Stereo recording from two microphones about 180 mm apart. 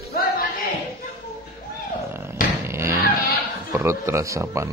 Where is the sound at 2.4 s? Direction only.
50° left (ahead or behind).